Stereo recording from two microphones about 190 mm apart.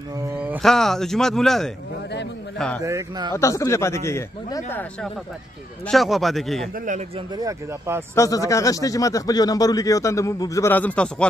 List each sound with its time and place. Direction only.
0.6 s speech: centre (ahead or behind)
2.8 s speech: 20° right (ahead or behind)
3.3 s speech: 15° left (ahead or behind)
5.9 s speech: centre (ahead or behind)
7.3 s speech: 15° right (ahead or behind)
8.1 s speech: 15° left (ahead or behind)